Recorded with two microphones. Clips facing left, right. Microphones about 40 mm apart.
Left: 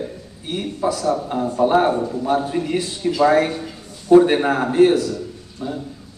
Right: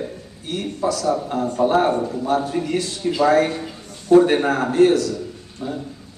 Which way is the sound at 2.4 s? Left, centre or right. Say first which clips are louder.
Left 1 dB; centre.